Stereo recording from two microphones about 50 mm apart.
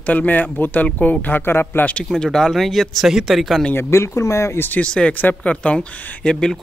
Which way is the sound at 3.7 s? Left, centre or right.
Left.